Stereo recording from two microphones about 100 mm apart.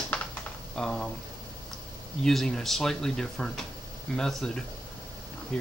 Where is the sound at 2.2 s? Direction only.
5° left (ahead or behind).